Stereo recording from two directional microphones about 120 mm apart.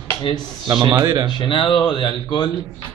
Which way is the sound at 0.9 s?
30° right (ahead or behind).